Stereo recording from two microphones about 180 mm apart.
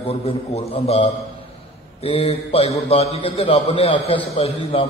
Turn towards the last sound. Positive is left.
turn(degrees=35)  # may be behind; listen again after turning